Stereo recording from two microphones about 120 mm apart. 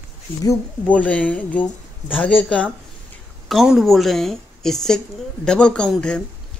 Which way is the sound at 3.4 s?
Centre (ahead or behind).